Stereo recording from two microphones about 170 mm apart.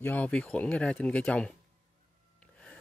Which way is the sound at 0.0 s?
10° left (ahead or behind).